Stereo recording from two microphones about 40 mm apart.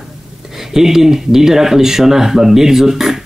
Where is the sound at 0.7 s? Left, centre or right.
Centre.